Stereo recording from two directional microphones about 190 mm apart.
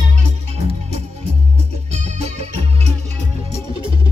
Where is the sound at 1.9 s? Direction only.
35° right (ahead or behind).